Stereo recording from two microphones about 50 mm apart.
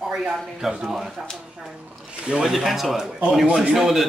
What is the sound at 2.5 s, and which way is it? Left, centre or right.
A man's voice, centre.